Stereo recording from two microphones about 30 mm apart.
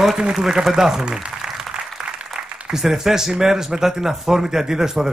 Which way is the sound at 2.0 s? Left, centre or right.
Centre.